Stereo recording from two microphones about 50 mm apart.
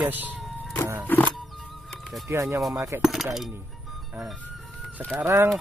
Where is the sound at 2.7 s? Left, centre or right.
Right.